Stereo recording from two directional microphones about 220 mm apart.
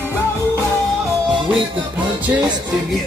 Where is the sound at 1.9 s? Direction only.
5° right (ahead or behind).